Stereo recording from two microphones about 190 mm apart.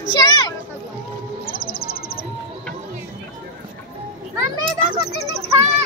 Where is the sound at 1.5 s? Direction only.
50° left (ahead or behind).